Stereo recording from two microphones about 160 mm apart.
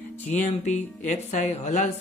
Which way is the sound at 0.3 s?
45° left (ahead or behind).